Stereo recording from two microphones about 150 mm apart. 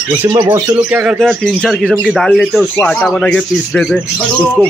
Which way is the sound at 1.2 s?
5° left (ahead or behind).